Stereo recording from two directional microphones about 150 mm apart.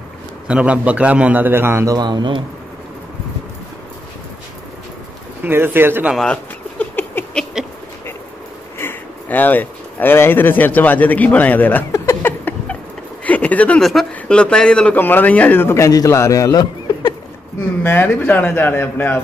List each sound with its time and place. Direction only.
0.5 s a man's voice: 10° right (ahead or behind)
2.0 s speech: 30° right (ahead or behind)
5.4 s a man's voice: 15° right (ahead or behind)
6.1 s a sound: 10° left (ahead or behind)
8.7 s speech: 15° left (ahead or behind)
17.8 s speech: 15° left (ahead or behind)